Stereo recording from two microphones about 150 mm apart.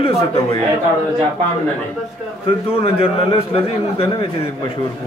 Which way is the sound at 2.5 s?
40° left (ahead or behind).